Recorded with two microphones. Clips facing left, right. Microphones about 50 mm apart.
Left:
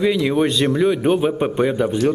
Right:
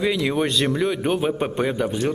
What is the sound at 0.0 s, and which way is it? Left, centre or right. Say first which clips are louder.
A man's voice: left 4 dB; centre.